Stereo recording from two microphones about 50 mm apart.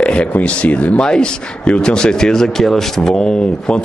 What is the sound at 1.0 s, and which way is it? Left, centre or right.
A man's voice, centre.